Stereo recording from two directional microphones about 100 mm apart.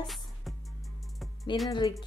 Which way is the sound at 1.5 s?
50° left (ahead or behind).